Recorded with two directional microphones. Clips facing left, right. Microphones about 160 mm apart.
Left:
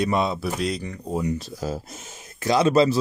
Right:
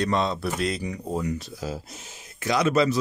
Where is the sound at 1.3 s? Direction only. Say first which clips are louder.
Left 3 dB; 40° left (ahead or behind).